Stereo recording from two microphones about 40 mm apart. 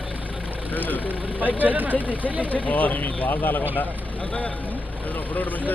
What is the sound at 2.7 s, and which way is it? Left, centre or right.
Speech, left.